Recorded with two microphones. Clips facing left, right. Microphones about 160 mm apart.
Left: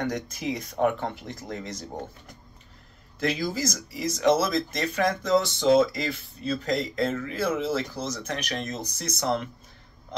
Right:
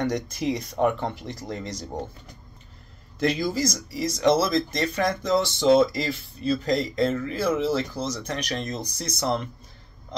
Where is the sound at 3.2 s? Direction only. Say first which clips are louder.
Right 3 dB; 5° left (ahead or behind).